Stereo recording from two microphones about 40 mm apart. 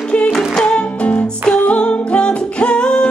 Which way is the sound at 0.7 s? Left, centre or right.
Left.